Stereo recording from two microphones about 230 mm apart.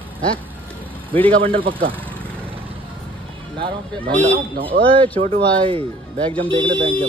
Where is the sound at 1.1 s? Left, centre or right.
Right.